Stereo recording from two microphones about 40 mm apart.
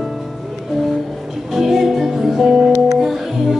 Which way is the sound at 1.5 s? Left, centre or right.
Centre.